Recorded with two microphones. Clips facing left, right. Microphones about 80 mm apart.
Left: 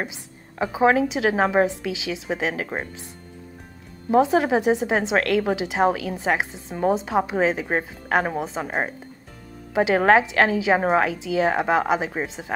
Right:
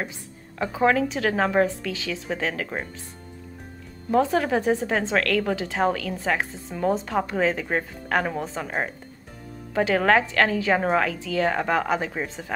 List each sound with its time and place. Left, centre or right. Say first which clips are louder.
0.0 s speech: left 1 dB; centre
4.1 s speech: left 3 dB; centre